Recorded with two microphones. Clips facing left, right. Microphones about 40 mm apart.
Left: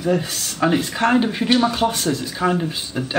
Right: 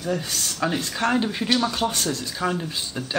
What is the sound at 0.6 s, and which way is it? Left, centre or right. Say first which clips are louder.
Speech: left 7 dB; centre.